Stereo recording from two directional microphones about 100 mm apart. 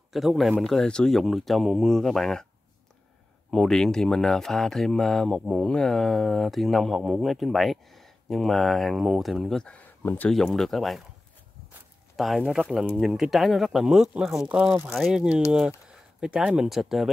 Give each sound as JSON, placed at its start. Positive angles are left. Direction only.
{"t": 0.1, "sound": "speech", "side_deg": 0}
{"t": 3.4, "sound": "speech", "side_deg": 5}
{"t": 10.3, "sound": "speech", "side_deg": 5}
{"t": 12.2, "sound": "speech", "side_deg": 0}